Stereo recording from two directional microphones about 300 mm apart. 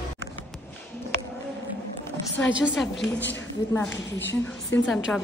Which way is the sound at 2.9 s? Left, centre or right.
Left.